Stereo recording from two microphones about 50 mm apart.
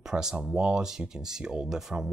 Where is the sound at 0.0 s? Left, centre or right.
Centre.